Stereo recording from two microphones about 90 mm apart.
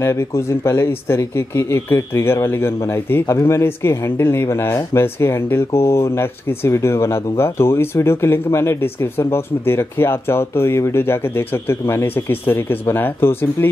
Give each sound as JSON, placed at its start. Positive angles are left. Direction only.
{"t": 0.0, "sound": "speech", "side_deg": 30}